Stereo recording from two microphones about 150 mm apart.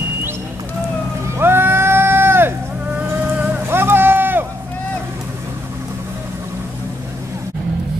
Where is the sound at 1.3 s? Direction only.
15° right (ahead or behind).